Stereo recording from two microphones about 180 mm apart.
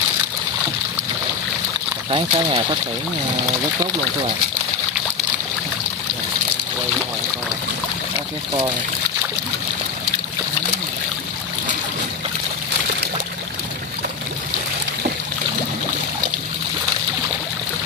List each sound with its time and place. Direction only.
2.0 s speech: 30° right (ahead or behind)